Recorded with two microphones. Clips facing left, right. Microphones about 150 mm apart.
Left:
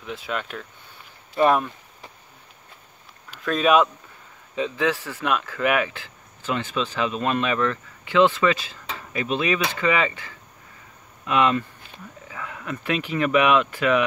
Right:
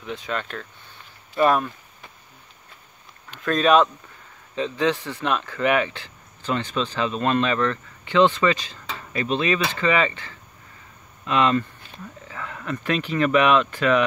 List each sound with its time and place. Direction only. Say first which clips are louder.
0.0 s speech: right 1 dB; 5° left (ahead or behind)
1.3 s speech: even; 20° left (ahead or behind)
3.3 s speech: right 1 dB; 5° left (ahead or behind)
8.8 s a sound: right 1 dB; 10° left (ahead or behind)
9.7 s speech: right 1 dB; 10° left (ahead or behind)